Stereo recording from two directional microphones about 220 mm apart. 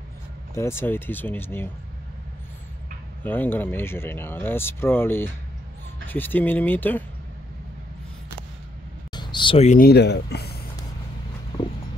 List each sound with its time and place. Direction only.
0.6 s speech: 10° left (ahead or behind)
3.3 s speech: 10° left (ahead or behind)
9.1 s speech: 20° left (ahead or behind); by 10.6 s 45° left (ahead or behind)